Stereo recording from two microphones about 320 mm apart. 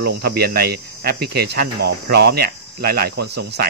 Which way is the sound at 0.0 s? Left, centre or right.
Right.